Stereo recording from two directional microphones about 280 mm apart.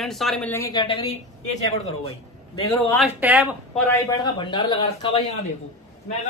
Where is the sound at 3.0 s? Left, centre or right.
Centre.